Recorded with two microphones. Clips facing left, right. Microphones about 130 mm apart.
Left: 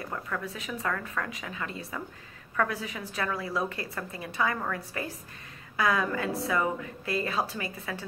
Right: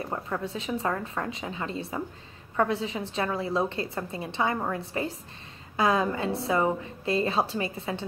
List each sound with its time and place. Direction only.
0.0 s a woman's voice: 30° right (ahead or behind)